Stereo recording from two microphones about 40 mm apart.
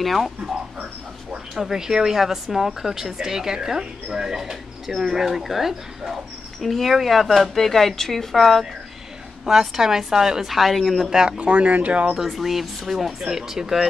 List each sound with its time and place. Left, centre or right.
0.0 s speech: centre
1.5 s a woman's voice: centre
9.5 s a woman's voice: centre
10.5 s a woman's voice: centre; by 12.1 s right
12.1 s a woman's voice: centre